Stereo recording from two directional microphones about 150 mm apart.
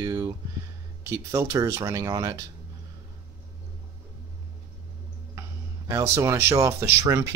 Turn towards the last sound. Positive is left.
turn(degrees=-20)  # may be behind; listen again after turning